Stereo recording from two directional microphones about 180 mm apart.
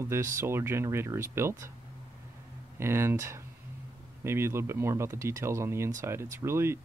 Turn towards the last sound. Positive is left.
turn(degrees=-15)  # may be behind; listen again after turning